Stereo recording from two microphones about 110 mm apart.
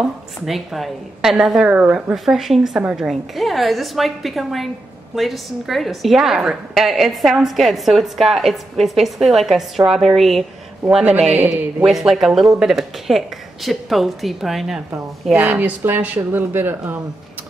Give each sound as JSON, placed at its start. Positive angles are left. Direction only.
{"t": 0.0, "sound": "a woman's voice", "side_deg": 0}
{"t": 2.1, "sound": "a woman's voice", "side_deg": 0}
{"t": 11.4, "sound": "a woman's voice", "side_deg": -5}
{"t": 15.3, "sound": "a woman's voice", "side_deg": -15}